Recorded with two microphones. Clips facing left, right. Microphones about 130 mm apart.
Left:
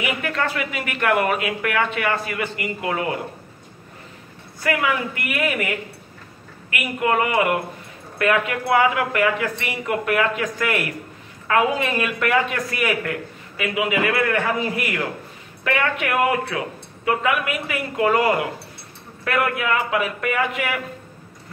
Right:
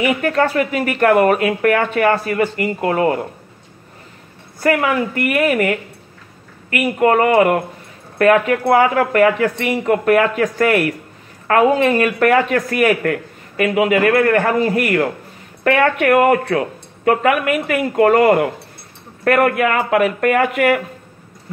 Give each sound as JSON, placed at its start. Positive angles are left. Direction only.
{"t": 0.0, "sound": "speech", "side_deg": -40}
{"t": 4.6, "sound": "speech", "side_deg": -45}